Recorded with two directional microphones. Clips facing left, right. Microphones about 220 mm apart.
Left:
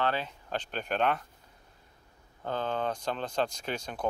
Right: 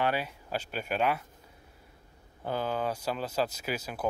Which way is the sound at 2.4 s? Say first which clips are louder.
Even; 10° right (ahead or behind).